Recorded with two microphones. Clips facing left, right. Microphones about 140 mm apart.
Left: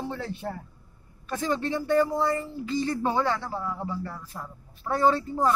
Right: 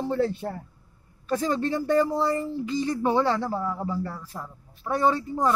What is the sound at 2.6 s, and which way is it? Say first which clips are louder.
Speech: even; 15° right (ahead or behind).